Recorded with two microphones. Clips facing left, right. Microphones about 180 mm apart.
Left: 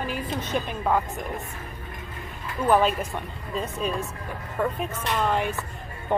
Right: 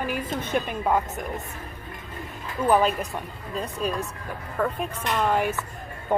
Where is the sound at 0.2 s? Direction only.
55° right (ahead or behind).